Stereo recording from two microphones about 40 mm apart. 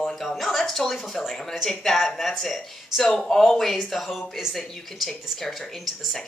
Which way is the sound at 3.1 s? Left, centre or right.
Centre.